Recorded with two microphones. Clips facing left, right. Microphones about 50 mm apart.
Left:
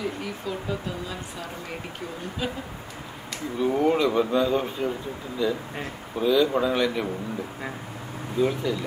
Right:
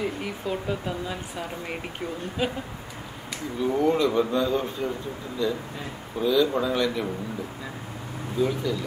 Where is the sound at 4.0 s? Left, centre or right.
Centre.